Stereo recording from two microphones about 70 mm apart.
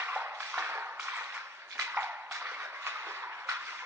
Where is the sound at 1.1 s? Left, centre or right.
Right.